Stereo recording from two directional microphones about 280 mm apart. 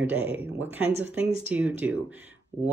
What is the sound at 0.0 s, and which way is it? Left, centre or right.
Speech, centre.